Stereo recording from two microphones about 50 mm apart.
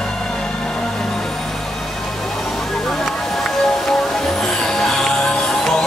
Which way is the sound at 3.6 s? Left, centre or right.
Centre.